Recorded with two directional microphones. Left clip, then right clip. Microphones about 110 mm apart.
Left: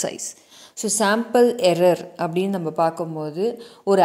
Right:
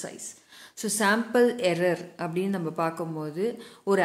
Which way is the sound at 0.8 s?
35° left (ahead or behind).